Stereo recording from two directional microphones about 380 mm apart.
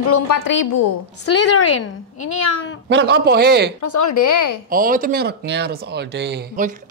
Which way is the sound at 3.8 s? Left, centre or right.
Left.